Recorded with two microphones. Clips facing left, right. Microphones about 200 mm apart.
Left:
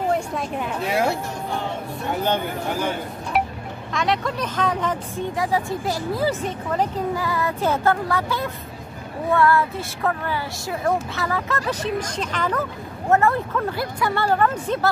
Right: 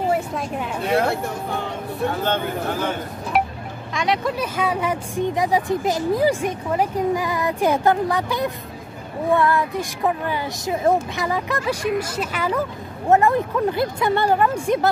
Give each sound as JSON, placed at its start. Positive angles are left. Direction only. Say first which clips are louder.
{"t": 0.1, "sound": "a woman's voice", "louder": "right 1 dB", "side_deg": 0}
{"t": 2.2, "sound": "speech", "louder": "right 1 dB", "side_deg": 15}
{"t": 3.9, "sound": "speech", "louder": "right 1 dB", "side_deg": 0}